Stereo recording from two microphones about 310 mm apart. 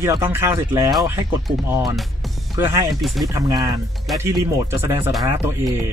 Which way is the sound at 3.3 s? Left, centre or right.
Centre.